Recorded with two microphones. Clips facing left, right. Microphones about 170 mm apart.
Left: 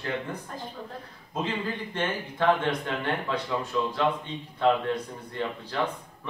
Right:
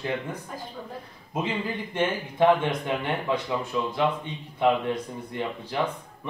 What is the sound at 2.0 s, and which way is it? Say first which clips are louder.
A man's voice: right 6 dB; 15° right (ahead or behind).